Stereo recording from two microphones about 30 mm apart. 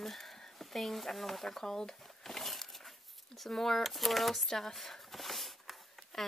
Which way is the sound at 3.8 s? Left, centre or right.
Centre.